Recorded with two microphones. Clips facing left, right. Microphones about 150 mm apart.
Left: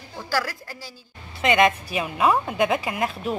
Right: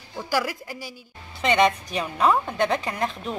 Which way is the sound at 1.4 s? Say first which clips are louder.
Left 1 dB; 5° left (ahead or behind).